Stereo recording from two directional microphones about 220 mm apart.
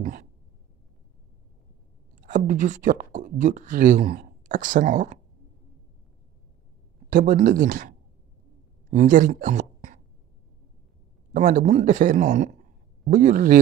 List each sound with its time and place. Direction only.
2.2 s speech: 35° right (ahead or behind)
7.1 s speech: 35° right (ahead or behind)
8.9 s speech: 35° right (ahead or behind)
11.3 s speech: 35° right (ahead or behind)